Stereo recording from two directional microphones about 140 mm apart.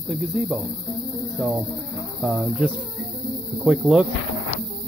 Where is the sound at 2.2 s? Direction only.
10° right (ahead or behind).